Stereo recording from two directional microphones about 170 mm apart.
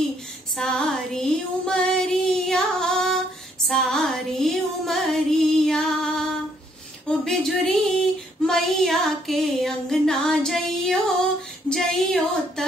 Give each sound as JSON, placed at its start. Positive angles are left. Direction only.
{"t": 0.6, "sound": "child singing", "side_deg": 5}
{"t": 3.6, "sound": "female singing", "side_deg": 0}
{"t": 7.1, "sound": "a sound", "side_deg": 0}
{"t": 8.5, "sound": "child singing", "side_deg": 0}